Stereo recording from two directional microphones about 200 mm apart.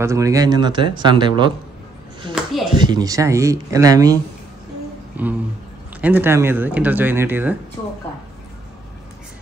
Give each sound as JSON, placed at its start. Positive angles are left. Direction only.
{"t": 0.0, "sound": "speech", "side_deg": -15}
{"t": 2.3, "sound": "a sound", "side_deg": -5}
{"t": 2.7, "sound": "speech", "side_deg": -20}
{"t": 5.2, "sound": "a sound", "side_deg": -10}
{"t": 5.9, "sound": "speech", "side_deg": -10}
{"t": 7.8, "sound": "speech", "side_deg": 25}